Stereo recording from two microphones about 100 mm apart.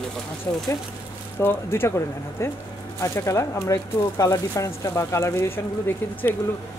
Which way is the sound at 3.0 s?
30° left (ahead or behind).